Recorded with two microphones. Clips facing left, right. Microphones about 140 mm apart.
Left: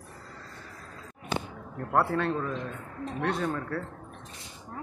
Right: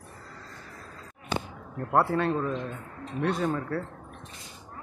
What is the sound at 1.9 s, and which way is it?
Speech, 5° right (ahead or behind).